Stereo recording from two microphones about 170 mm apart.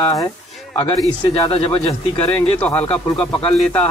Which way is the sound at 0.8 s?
35° left (ahead or behind).